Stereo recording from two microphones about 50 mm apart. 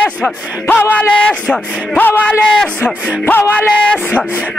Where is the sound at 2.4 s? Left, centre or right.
Centre.